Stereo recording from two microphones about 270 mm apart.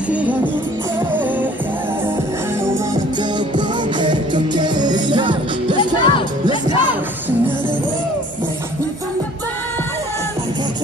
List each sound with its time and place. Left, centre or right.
0.1 s music: centre
3.5 s music: centre
5.8 s music: centre